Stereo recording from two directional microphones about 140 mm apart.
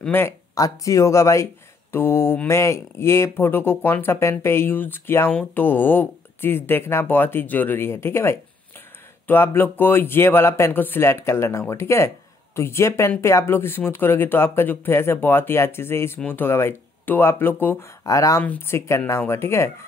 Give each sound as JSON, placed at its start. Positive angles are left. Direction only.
{"t": 0.0, "sound": "speech", "side_deg": 15}